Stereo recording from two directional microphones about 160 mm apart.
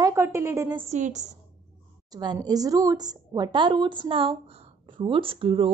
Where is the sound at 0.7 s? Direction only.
45° right (ahead or behind).